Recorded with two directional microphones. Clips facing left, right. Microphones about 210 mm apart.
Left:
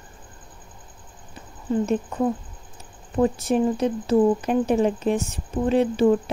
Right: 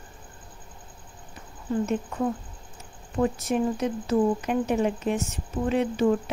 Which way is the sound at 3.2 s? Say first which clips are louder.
Left 4 dB; 30° left (ahead or behind).